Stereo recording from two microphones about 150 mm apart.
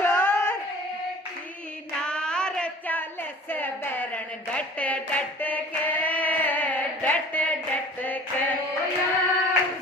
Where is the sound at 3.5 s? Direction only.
15° left (ahead or behind).